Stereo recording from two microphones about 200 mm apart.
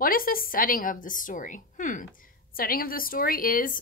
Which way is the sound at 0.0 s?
45° left (ahead or behind).